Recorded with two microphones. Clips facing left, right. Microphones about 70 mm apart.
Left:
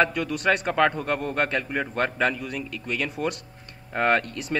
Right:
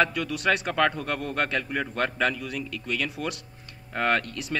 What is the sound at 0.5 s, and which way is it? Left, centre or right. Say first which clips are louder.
A man's voice: left 2 dB; centre.